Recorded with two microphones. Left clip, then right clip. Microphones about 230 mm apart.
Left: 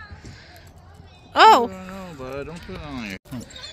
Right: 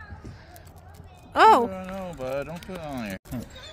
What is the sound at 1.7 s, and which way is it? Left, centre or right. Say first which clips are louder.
Horse: right 2 dB; right.